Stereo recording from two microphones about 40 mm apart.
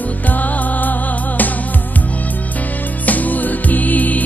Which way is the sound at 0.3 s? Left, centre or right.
Left.